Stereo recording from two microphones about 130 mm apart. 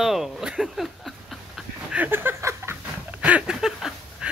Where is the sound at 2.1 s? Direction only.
15° right (ahead or behind).